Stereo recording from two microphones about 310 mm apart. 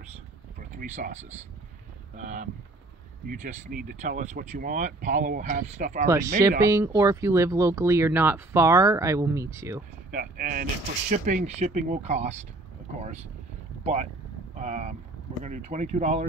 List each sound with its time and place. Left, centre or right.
0.6 s speech: right
6.0 s speech: centre
10.1 s speech: right
14.6 s speech: right